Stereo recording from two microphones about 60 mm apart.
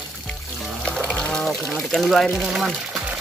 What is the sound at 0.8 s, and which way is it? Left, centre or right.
Music, centre.